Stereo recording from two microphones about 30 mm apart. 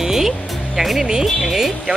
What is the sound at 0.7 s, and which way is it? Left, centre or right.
Speech, centre.